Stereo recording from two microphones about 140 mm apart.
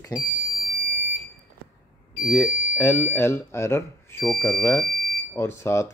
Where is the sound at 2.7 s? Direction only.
15° left (ahead or behind).